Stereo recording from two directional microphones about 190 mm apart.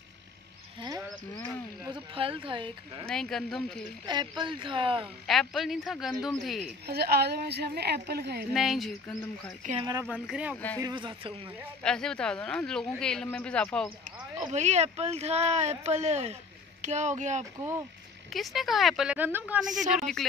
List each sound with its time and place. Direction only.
0.7 s cricket: 20° right (ahead or behind)
1.9 s speech: 30° right (ahead or behind)
3.1 s speech: centre (ahead or behind)
4.0 s speech: 25° right (ahead or behind)
5.0 s speech: centre (ahead or behind)
6.9 s a woman's voice: 55° right (ahead or behind)
8.5 s speech: centre (ahead or behind)
9.8 s speech: 20° right (ahead or behind)
10.1 s speech: 5° right (ahead or behind)
10.8 s speech: 25° right (ahead or behind)
11.8 s speech: 5° left (ahead or behind)
14.5 s speech: 35° right (ahead or behind)
17.6 s speech: 15° right (ahead or behind)
18.3 s speech: centre (ahead or behind)